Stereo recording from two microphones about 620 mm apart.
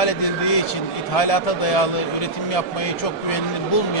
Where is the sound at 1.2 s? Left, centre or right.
Left.